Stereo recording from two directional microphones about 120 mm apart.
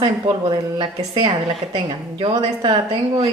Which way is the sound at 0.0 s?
45° right (ahead or behind).